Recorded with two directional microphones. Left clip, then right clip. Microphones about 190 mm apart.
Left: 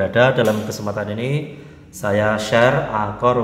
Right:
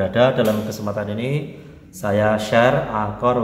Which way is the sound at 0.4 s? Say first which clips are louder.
Left 1 dB; 20° left (ahead or behind).